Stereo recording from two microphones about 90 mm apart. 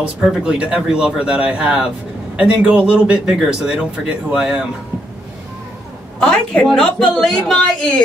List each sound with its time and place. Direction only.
0.0 s a man's voice: 10° right (ahead or behind)
6.1 s a woman's voice: 5° left (ahead or behind)